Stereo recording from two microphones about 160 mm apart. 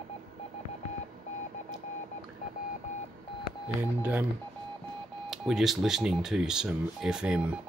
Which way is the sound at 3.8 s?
10° right (ahead or behind).